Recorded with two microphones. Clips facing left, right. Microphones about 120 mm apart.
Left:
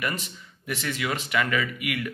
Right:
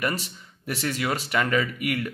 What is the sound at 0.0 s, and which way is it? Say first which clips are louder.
Speech: right 3 dB; 40° right (ahead or behind).